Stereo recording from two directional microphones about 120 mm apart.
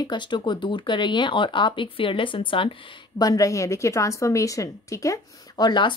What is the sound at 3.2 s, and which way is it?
A woman's voice, 30° left (ahead or behind).